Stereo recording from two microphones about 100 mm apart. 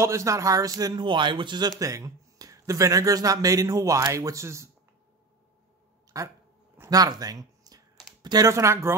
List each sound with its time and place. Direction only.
0.0 s speech: 30° right (ahead or behind); by 1.7 s 50° right (ahead or behind)
1.8 s speech: 35° right (ahead or behind)
6.1 s speech: 35° right (ahead or behind)